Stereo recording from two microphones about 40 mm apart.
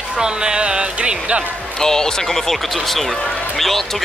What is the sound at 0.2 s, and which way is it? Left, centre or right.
Speech, centre.